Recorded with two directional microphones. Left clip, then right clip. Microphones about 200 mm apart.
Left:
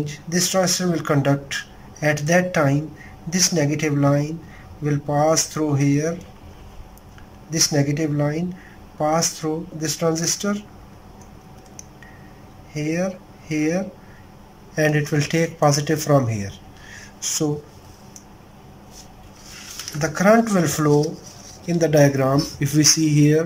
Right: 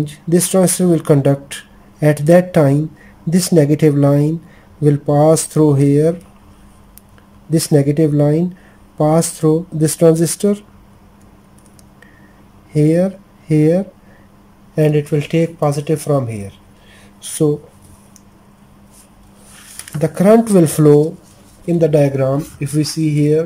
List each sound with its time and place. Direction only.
0.0 s speech: 25° right (ahead or behind)
7.5 s speech: 25° right (ahead or behind)
12.7 s speech: 30° right (ahead or behind); by 16.0 s 10° right (ahead or behind)
16.3 s a sound: 15° right (ahead or behind)
20.0 s speech: 25° right (ahead or behind)
22.1 s speech: centre (ahead or behind)